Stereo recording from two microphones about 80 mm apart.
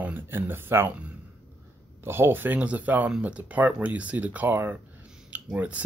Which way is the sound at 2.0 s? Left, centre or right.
Right.